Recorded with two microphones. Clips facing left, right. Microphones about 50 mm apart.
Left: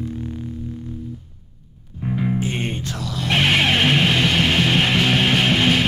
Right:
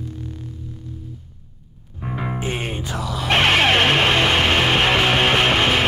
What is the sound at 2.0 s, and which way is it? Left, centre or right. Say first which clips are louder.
Music: left 3 dB; right.